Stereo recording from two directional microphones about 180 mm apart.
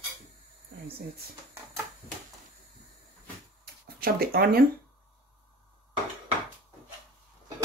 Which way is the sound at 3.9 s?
55° right (ahead or behind).